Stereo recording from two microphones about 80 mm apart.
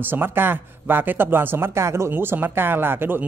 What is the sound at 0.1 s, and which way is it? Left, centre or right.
Speech, right.